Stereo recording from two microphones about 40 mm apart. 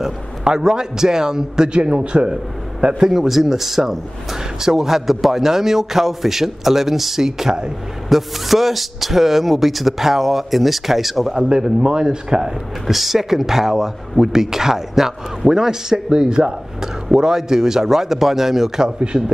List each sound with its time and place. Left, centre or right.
0.0 s a man's voice: centre
3.0 s speech: centre
8.1 s speech: centre
11.4 s a man's voice: right
12.8 s speech: centre
18.9 s a man's voice: right